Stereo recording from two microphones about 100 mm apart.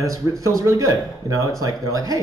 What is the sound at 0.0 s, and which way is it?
Speech, 30° right (ahead or behind).